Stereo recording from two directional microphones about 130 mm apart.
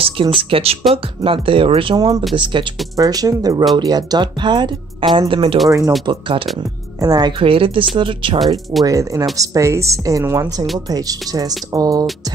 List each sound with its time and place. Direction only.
0.2 s speech: 40° right (ahead or behind)
2.0 s a woman's voice: 30° right (ahead or behind)
3.0 s a woman's voice: 30° right (ahead or behind); by 5.6 s 45° right (ahead or behind)
5.7 s a woman's voice: 25° right (ahead or behind)
6.0 s speech: 40° right (ahead or behind)
7.0 s speech: 30° right (ahead or behind)
8.8 s a woman's voice: 25° right (ahead or behind)